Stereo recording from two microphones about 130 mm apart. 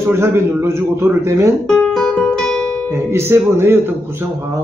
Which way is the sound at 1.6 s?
5° left (ahead or behind).